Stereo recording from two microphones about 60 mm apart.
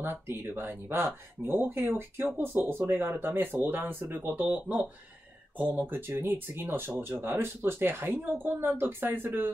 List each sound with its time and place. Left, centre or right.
0.6 s speech: right